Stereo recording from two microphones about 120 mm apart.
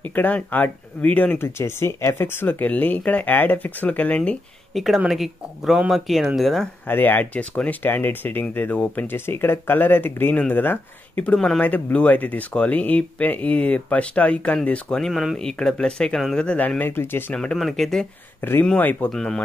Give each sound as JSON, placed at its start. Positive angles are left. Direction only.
{"t": 0.0, "sound": "speech", "side_deg": 15}
{"t": 6.9, "sound": "speech", "side_deg": 15}
{"t": 11.3, "sound": "speech", "side_deg": 5}
{"t": 17.4, "sound": "speech", "side_deg": 5}
{"t": 18.4, "sound": "speech", "side_deg": 15}